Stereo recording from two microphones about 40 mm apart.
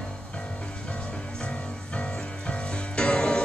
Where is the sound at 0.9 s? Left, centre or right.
Left.